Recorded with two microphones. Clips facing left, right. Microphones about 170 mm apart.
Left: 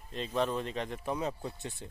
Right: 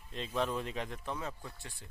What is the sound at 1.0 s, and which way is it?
Speech, 20° left (ahead or behind).